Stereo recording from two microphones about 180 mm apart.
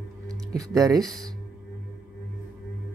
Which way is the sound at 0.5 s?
20° right (ahead or behind).